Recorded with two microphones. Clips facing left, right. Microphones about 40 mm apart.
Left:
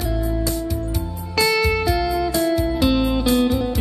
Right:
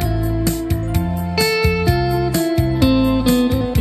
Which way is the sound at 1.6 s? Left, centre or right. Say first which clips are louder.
Right 2 dB; centre.